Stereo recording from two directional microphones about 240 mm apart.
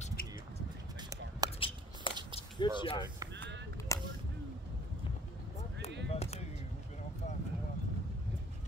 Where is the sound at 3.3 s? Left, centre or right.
Right.